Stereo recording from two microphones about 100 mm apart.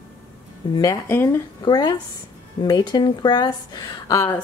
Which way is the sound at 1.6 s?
45° left (ahead or behind).